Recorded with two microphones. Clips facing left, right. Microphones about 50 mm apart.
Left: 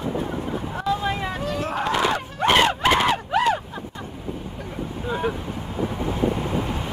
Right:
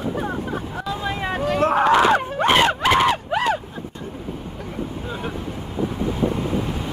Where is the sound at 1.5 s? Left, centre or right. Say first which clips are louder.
Right 9 dB; right.